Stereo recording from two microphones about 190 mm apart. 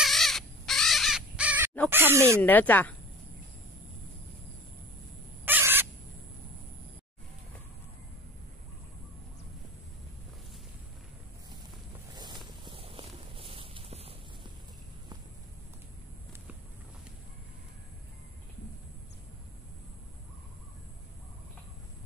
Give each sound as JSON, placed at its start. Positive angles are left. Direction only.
{"t": 0.0, "sound": "crow", "side_deg": 0}
{"t": 1.9, "sound": "speech", "side_deg": -10}
{"t": 2.4, "sound": "a woman's voice", "side_deg": 10}
{"t": 5.4, "sound": "a sound", "side_deg": -10}
{"t": 12.2, "sound": "walk", "side_deg": -25}